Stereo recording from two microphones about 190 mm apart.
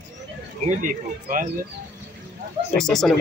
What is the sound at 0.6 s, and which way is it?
Speech, 45° right (ahead or behind).